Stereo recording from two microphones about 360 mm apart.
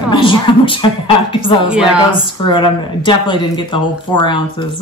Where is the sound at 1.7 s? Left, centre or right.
Centre.